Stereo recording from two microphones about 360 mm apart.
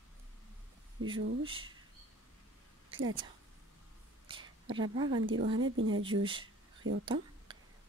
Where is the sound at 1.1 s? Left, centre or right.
Centre.